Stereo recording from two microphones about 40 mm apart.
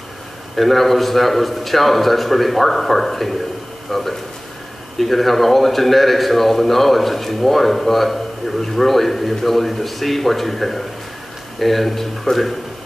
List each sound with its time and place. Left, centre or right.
0.6 s a man's voice: centre